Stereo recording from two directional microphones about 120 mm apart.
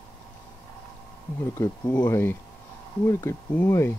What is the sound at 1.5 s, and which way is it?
Speech, 25° left (ahead or behind).